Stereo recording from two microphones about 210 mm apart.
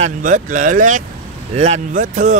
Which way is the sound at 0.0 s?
40° right (ahead or behind).